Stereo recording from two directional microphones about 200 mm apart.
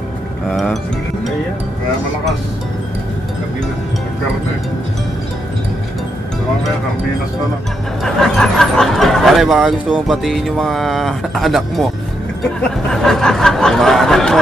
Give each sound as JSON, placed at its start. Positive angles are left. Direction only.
{"t": 0.5, "sound": "speech", "side_deg": 0}
{"t": 8.0, "sound": "speech", "side_deg": 0}
{"t": 12.9, "sound": "speech", "side_deg": 0}